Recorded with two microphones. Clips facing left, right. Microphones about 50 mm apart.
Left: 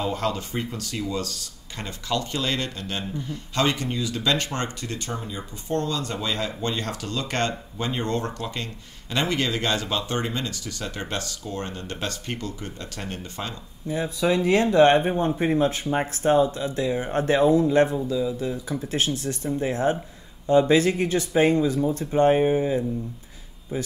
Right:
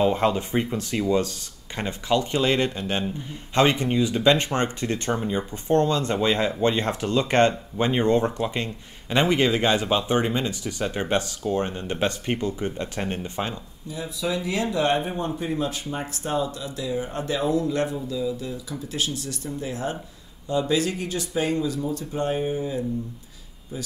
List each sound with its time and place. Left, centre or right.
0.0 s speech: right
13.8 s speech: left
17.5 s speech: left